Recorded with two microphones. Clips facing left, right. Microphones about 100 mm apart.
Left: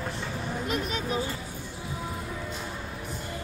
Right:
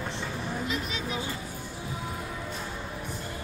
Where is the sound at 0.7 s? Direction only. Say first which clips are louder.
Left 3 dB; 40° left (ahead or behind).